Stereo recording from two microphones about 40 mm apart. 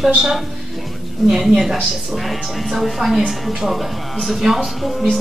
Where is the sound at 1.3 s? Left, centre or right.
Centre.